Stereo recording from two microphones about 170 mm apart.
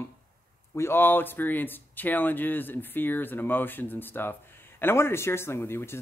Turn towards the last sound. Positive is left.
turn(degrees=15)  # may be behind; listen again after turning